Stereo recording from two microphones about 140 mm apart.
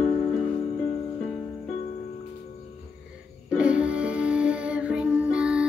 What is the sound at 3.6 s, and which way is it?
Music, 10° right (ahead or behind).